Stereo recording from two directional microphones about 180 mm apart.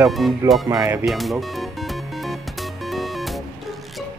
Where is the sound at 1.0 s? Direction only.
Centre (ahead or behind).